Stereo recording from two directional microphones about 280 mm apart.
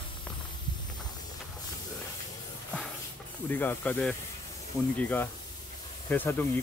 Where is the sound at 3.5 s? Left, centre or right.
Centre.